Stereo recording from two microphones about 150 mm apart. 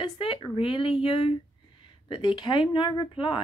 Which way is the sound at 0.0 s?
35° left (ahead or behind).